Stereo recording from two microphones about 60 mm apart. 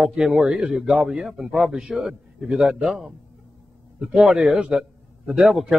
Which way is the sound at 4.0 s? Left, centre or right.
Centre.